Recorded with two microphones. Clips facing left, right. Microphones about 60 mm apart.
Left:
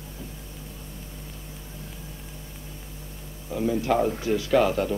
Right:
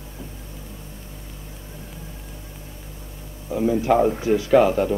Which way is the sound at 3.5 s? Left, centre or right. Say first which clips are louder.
Right 5 dB; centre.